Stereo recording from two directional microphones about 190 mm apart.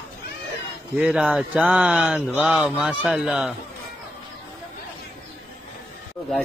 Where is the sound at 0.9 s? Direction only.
5° right (ahead or behind).